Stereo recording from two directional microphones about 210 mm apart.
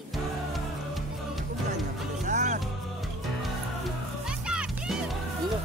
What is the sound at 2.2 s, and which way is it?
Music, 35° right (ahead or behind).